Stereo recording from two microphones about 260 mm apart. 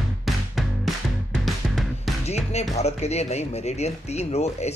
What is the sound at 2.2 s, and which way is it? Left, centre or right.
Music, left.